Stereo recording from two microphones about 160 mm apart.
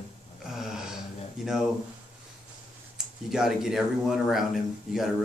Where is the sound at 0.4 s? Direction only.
Centre (ahead or behind).